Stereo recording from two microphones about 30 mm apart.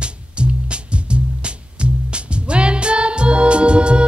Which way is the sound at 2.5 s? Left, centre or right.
Right.